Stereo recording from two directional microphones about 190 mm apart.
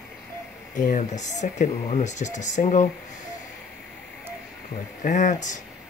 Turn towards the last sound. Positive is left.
turn(degrees=40)  # may be behind; listen again after turning